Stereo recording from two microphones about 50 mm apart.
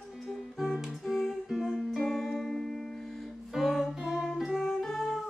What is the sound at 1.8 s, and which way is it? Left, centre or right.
Music, centre.